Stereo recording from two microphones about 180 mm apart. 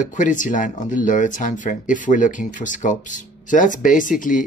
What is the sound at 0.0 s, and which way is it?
Speech, 45° left (ahead or behind).